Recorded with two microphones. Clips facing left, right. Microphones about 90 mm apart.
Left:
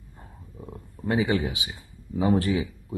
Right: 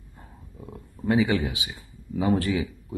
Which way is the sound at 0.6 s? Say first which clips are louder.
Left 1 dB; 10° left (ahead or behind).